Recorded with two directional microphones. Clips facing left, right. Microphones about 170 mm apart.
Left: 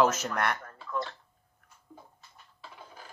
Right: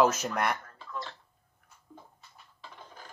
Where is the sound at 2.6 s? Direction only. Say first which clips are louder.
Even; 5° left (ahead or behind).